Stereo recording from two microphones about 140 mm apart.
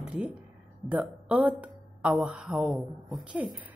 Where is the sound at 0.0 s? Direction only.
10° right (ahead or behind).